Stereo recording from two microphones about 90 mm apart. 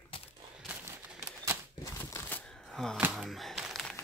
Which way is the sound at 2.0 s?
35° left (ahead or behind).